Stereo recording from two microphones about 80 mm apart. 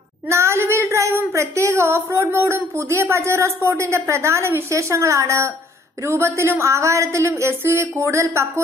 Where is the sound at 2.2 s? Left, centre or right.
Right.